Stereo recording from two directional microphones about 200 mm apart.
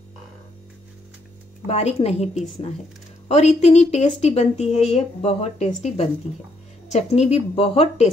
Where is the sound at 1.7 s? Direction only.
30° left (ahead or behind).